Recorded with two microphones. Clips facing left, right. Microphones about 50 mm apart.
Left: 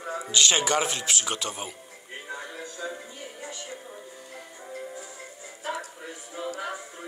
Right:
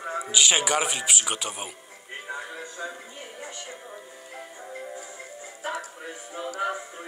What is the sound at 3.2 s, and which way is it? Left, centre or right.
Music, right.